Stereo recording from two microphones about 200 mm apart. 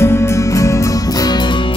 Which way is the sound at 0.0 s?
15° left (ahead or behind).